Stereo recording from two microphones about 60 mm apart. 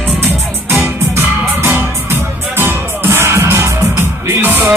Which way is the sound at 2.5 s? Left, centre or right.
Right.